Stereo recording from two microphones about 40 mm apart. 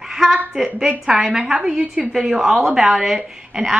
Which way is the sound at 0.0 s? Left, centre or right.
Centre.